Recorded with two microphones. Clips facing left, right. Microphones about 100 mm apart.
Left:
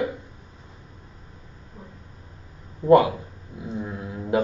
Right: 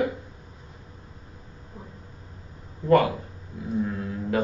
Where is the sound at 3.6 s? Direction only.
20° left (ahead or behind).